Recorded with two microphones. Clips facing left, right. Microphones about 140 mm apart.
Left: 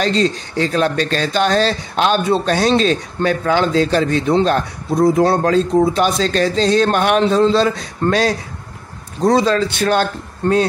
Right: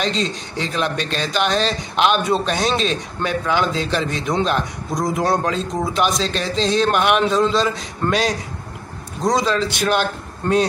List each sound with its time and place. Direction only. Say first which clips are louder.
0.0 s speech: left 6 dB; 40° left (ahead or behind)